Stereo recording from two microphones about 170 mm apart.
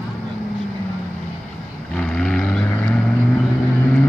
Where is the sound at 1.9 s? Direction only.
5° left (ahead or behind).